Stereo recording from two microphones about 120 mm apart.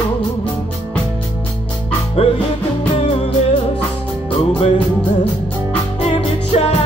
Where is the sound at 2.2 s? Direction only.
55° left (ahead or behind).